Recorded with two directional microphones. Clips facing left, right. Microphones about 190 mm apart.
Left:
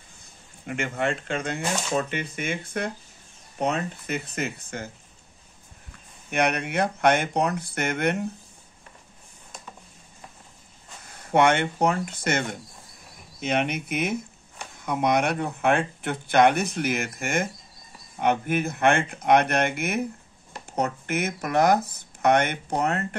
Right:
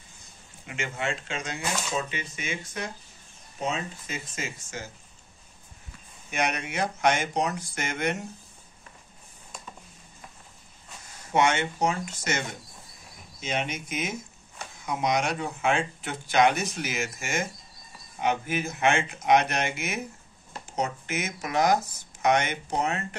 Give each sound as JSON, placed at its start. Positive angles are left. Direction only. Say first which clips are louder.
{"t": 0.7, "sound": "speech", "louder": "left 5 dB", "side_deg": 50}
{"t": 6.3, "sound": "speech", "louder": "left 5 dB", "side_deg": 60}
{"t": 11.1, "sound": "speech", "louder": "left 4 dB", "side_deg": 60}